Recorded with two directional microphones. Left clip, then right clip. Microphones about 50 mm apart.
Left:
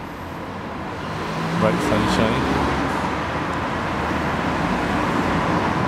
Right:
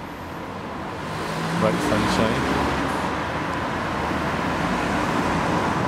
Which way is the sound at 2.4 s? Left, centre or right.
Right.